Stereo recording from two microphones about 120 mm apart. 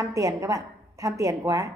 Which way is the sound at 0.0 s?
25° right (ahead or behind).